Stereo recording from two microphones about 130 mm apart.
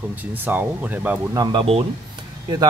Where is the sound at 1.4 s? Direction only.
30° right (ahead or behind).